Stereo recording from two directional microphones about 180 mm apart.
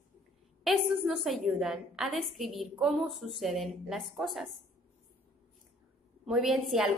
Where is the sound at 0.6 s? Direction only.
Centre (ahead or behind).